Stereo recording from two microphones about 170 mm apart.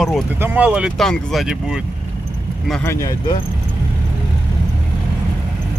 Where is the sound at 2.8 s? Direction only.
15° left (ahead or behind).